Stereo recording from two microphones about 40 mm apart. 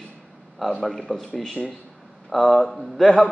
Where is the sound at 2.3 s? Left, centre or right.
Centre.